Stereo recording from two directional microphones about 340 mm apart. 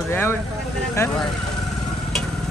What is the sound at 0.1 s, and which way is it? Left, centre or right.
Speech, centre.